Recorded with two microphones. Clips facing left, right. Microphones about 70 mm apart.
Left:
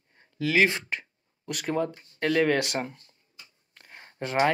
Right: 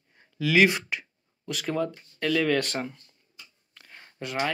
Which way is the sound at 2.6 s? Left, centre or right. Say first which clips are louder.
Left 1 dB; centre.